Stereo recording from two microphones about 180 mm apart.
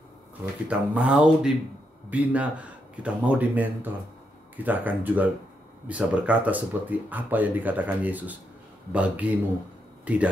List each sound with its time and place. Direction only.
0.7 s speech: 5° right (ahead or behind)